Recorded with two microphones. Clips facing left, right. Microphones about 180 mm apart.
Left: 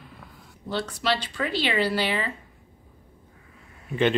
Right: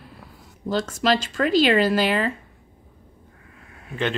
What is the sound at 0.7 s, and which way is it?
Speech, 45° right (ahead or behind).